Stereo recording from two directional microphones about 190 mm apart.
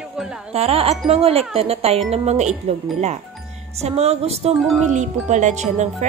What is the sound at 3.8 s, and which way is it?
Speech, 35° right (ahead or behind).